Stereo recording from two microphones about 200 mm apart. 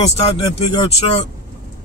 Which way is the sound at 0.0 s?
30° left (ahead or behind).